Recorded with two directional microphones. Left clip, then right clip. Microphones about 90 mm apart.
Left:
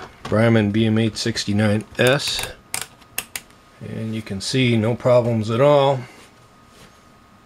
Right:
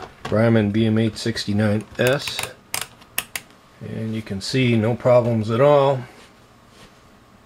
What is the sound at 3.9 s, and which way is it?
Speech, 25° left (ahead or behind).